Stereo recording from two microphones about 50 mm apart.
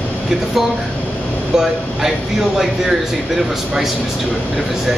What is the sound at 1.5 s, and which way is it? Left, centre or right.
Speech, centre.